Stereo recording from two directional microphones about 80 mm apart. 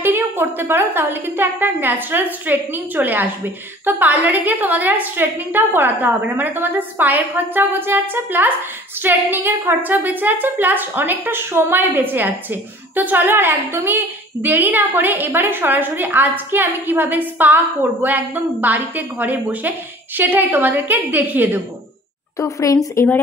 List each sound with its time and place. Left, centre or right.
0.0 s a woman's voice: right
22.4 s speech: left